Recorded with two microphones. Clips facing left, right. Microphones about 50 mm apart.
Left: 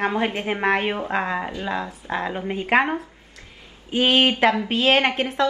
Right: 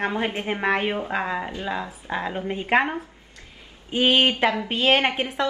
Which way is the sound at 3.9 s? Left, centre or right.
Centre.